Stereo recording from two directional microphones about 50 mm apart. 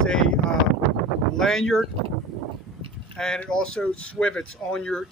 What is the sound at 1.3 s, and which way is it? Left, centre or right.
Speech, centre.